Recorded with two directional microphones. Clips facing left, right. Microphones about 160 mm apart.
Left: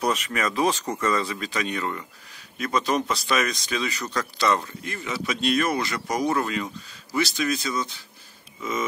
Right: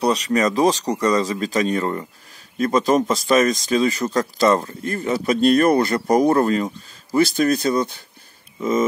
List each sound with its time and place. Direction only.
0.0 s speech: 35° right (ahead or behind); by 8.0 s 55° right (ahead or behind)